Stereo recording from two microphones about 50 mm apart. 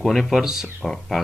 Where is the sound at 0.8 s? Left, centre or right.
Centre.